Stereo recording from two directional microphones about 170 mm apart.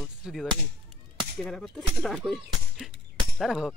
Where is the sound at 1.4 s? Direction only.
5° left (ahead or behind).